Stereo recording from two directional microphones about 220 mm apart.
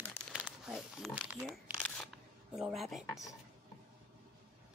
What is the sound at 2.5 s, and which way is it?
Speech, centre (ahead or behind).